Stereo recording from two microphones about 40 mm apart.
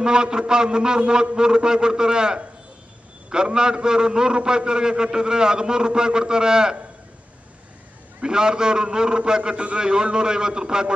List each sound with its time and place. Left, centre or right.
0.0 s a man's voice: centre
8.2 s a man's voice: centre